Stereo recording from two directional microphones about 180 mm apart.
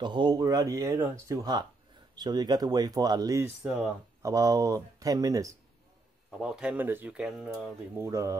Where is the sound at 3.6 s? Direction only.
10° right (ahead or behind).